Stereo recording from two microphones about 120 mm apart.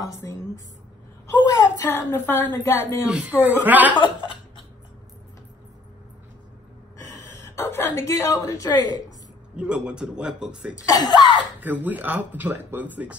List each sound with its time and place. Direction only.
0.0 s a woman's voice: 25° left (ahead or behind)
1.4 s a woman's voice: 30° left (ahead or behind)
1.9 s a woman's voice: 20° left (ahead or behind)
3.1 s speech: 10° right (ahead or behind)
3.9 s a sound: 40° left (ahead or behind)
7.3 s a woman's voice: 20° left (ahead or behind)
9.6 s speech: 10° right (ahead or behind)
10.9 s speech: 35° left (ahead or behind)
11.6 s speech: 15° right (ahead or behind)